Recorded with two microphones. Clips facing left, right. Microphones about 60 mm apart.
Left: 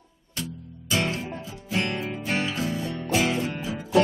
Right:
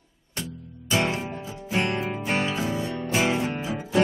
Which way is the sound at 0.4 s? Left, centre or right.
Right.